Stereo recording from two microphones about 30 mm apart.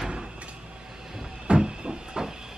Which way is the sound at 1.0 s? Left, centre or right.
Centre.